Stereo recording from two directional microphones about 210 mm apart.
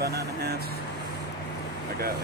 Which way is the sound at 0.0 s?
50° right (ahead or behind).